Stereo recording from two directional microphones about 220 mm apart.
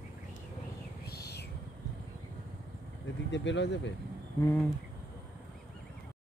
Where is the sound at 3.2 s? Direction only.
55° left (ahead or behind).